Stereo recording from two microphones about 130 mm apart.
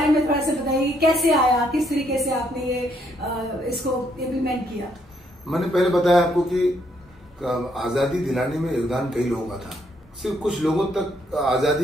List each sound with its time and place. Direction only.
0.0 s a woman's voice: centre (ahead or behind)
3.3 s a man's voice: centre (ahead or behind)